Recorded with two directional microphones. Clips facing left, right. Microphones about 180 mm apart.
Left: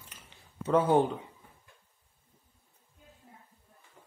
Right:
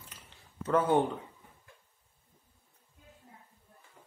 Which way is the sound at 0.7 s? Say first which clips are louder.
Left 2 dB; 15° left (ahead or behind).